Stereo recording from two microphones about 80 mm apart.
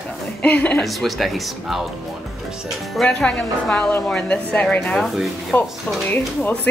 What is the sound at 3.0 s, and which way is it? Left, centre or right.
A woman's voice, centre.